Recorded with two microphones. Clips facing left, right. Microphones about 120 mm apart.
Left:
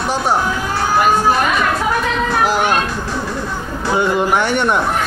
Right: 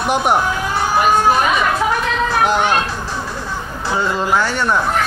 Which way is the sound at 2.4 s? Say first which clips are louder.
Even; 5° left (ahead or behind).